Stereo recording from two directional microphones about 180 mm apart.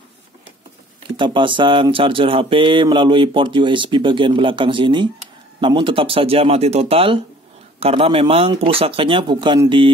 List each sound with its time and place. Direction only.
1.1 s speech: 25° right (ahead or behind)